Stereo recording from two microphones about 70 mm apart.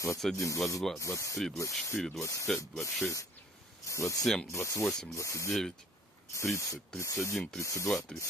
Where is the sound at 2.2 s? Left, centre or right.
Left.